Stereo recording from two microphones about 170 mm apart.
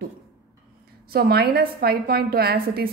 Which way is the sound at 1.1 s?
65° right (ahead or behind).